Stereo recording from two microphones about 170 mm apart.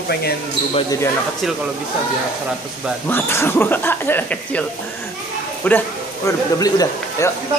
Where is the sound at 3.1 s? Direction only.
15° left (ahead or behind).